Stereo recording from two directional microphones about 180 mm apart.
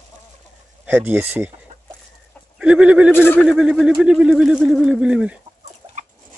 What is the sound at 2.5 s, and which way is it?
Fowl, 5° right (ahead or behind).